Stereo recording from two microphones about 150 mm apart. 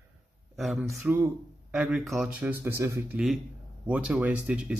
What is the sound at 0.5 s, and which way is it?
Speech, centre (ahead or behind).